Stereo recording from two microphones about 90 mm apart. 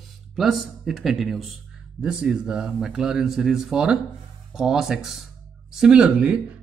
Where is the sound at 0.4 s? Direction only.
Centre (ahead or behind).